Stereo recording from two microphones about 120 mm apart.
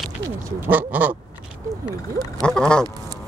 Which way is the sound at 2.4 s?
5° left (ahead or behind).